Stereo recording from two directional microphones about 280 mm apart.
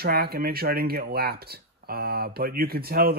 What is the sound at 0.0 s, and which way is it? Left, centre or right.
Speech, right.